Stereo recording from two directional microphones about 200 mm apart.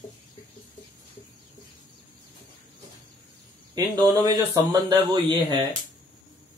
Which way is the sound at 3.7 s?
20° right (ahead or behind).